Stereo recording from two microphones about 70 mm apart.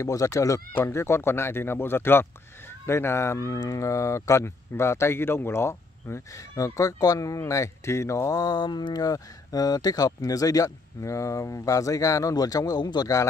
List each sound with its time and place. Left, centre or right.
0.0 s speech: left
0.8 s speech: left
3.5 s speech: left
8.4 s speech: left